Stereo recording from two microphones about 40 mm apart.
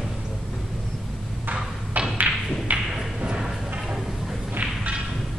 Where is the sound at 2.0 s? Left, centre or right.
Right.